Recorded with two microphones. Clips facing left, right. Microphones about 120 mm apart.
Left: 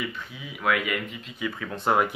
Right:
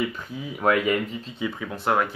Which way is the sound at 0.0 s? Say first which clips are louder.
Right 6 dB; 40° right (ahead or behind).